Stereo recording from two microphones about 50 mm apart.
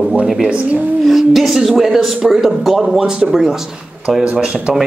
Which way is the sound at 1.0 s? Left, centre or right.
Centre.